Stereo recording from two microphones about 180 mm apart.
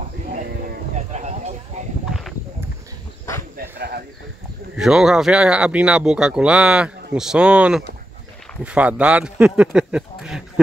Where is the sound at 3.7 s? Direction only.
60° right (ahead or behind).